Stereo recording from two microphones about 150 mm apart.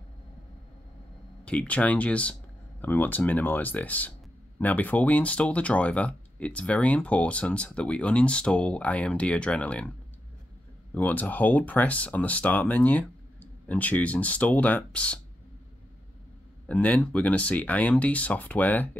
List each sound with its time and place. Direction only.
1.4 s speech: 10° left (ahead or behind)
11.0 s speech: 10° left (ahead or behind)
16.6 s speech: 10° left (ahead or behind)